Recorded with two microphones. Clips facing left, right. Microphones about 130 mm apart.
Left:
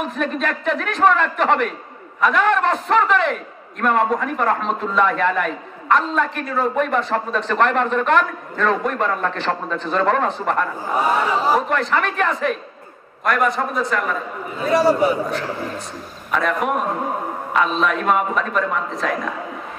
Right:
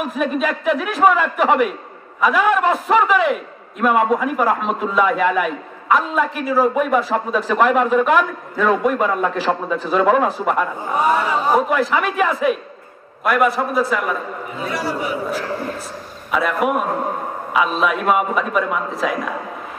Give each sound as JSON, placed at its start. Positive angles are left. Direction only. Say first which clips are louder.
{"t": 0.0, "sound": "a man's voice", "louder": "right 3 dB", "side_deg": -5}
{"t": 14.7, "sound": "a man's voice", "louder": "left 9 dB", "side_deg": 35}
{"t": 16.3, "sound": "a man's voice", "louder": "right 2 dB", "side_deg": -5}